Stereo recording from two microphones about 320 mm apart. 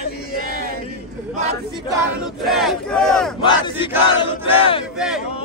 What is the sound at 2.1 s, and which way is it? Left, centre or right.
Battle cry, centre.